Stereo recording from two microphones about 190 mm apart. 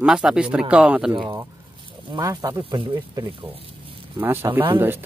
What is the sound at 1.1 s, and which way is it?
Speech, 25° right (ahead or behind).